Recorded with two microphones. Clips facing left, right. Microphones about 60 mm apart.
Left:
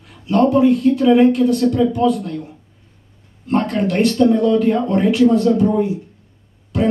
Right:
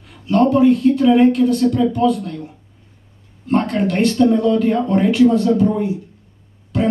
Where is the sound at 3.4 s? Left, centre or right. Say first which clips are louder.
Right 1 dB; centre.